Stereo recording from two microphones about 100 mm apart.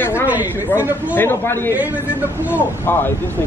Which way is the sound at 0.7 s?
15° right (ahead or behind).